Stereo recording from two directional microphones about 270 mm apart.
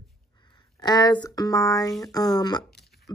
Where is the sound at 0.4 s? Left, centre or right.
Centre.